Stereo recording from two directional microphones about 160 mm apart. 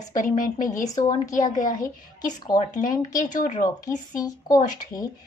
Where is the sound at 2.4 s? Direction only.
30° left (ahead or behind).